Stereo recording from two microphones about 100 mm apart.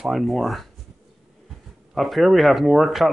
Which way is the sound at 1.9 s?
Centre (ahead or behind).